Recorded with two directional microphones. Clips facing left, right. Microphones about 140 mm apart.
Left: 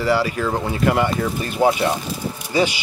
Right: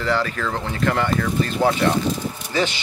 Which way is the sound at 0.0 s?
10° left (ahead or behind).